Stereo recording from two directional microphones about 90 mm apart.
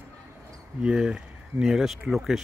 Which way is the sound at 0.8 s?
10° right (ahead or behind).